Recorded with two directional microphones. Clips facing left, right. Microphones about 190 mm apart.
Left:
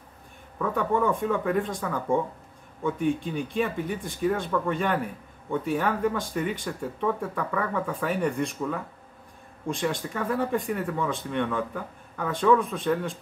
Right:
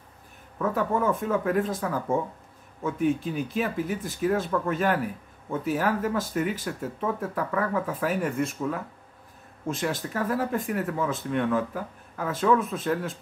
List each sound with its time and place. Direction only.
0.6 s speech: 5° right (ahead or behind)